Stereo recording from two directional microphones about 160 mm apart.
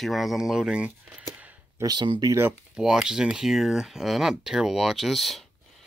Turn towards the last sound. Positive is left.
turn(degrees=0)  # may be behind; listen again after turning